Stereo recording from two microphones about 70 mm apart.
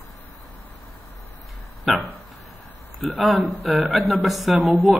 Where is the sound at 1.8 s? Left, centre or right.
Centre.